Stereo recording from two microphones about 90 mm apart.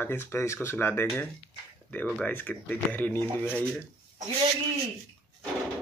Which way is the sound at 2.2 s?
20° left (ahead or behind).